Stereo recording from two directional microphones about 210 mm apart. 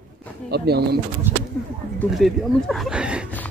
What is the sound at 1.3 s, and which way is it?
Speech, 10° right (ahead or behind).